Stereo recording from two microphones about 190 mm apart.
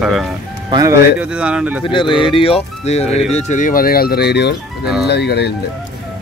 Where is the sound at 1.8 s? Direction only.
25° left (ahead or behind); by 5.5 s 60° left (ahead or behind).